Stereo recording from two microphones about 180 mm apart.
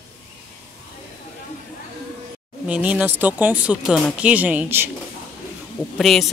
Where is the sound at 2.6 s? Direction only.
5° right (ahead or behind).